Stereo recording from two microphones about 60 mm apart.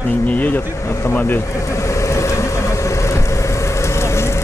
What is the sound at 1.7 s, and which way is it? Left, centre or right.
Vehicle, left.